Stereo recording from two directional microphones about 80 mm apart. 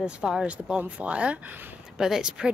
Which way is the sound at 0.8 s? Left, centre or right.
Centre.